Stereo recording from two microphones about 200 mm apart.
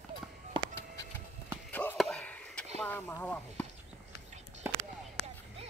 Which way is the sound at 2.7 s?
10° left (ahead or behind).